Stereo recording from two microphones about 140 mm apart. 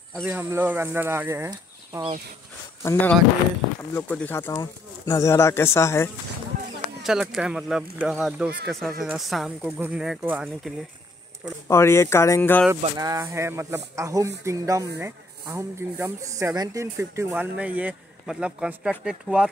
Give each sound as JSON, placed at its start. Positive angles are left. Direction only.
{"t": 0.1, "sound": "speech", "side_deg": -10}
{"t": 2.8, "sound": "speech", "side_deg": 20}
{"t": 7.0, "sound": "speech", "side_deg": 0}
{"t": 11.6, "sound": "speech", "side_deg": 20}
{"t": 12.9, "sound": "speech", "side_deg": -25}